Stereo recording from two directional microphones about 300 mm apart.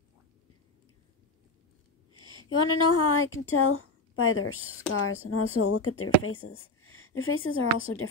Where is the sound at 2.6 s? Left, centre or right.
Left.